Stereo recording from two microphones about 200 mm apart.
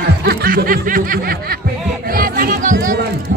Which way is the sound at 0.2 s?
50° right (ahead or behind).